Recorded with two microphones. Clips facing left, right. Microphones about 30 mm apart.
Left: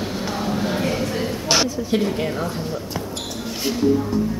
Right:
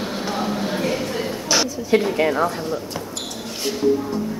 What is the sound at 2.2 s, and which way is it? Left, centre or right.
Speech, right.